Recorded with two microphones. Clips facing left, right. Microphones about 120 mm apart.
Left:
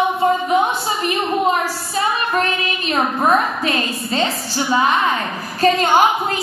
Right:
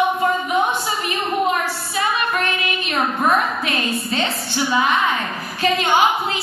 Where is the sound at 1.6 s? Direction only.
40° left (ahead or behind).